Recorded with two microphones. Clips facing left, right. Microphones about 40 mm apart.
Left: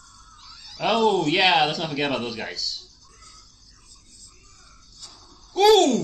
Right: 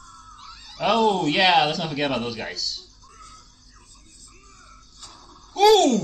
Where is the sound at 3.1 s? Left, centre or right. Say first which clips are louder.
Right 6 dB; right.